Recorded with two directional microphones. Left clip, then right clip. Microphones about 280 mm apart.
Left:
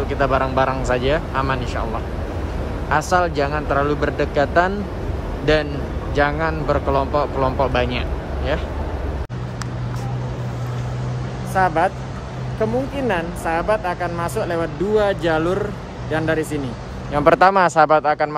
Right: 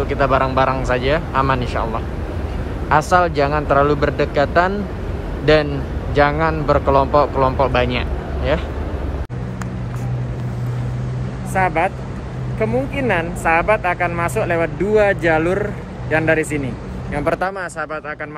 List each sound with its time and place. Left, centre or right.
0.1 s speech: centre
2.9 s a man's voice: centre
11.5 s speech: centre
17.1 s speech: left